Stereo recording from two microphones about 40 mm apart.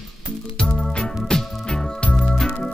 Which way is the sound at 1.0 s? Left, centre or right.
Centre.